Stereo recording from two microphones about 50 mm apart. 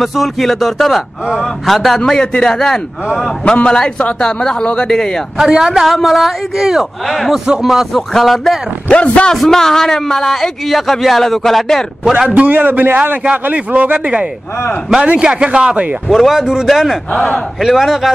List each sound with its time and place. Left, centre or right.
0.0 s a man's voice: centre
2.0 s a man's voice: centre
5.4 s a man's voice: centre
7.1 s a man's voice: centre
8.9 s a man's voice: left
9.3 s a man's voice: centre
12.4 s a man's voice: right
15.0 s speech: right
16.1 s a man's voice: centre